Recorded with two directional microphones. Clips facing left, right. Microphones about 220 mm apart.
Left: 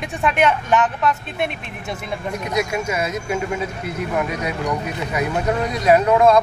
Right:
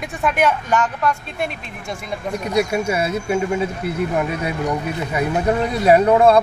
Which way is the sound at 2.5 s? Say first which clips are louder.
Right 4 dB; 30° right (ahead or behind).